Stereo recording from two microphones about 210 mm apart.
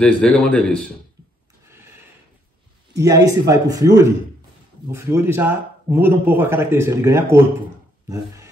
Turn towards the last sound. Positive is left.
turn(degrees=-10)  # may be behind; listen again after turning